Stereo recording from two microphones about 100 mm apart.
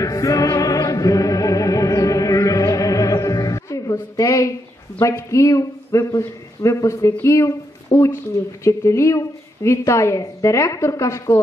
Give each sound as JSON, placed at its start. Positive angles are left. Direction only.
{"t": 0.0, "sound": "music", "side_deg": 35}
{"t": 5.0, "sound": "speech", "side_deg": 30}